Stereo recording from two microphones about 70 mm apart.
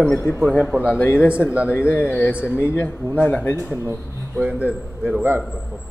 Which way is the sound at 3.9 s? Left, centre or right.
Right.